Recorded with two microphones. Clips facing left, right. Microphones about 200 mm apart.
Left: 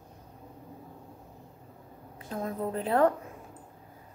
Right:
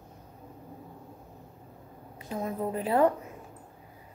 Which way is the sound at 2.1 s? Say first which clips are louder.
Right 1 dB; 10° right (ahead or behind).